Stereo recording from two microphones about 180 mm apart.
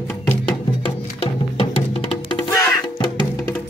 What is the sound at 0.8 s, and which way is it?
Music, 30° left (ahead or behind).